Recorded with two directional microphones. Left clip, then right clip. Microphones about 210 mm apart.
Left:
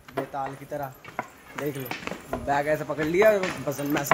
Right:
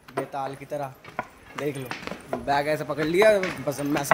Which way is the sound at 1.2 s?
40° right (ahead or behind).